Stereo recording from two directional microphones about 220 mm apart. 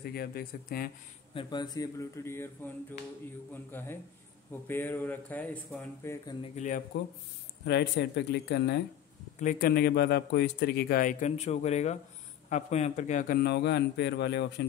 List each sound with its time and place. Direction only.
0.1 s a man's voice: 45° left (ahead or behind)
1.3 s speech: 20° left (ahead or behind); by 6.1 s 5° left (ahead or behind)
6.2 s a man's voice: 30° left (ahead or behind)
7.6 s a man's voice: 50° left (ahead or behind)
9.4 s a man's voice: 40° left (ahead or behind)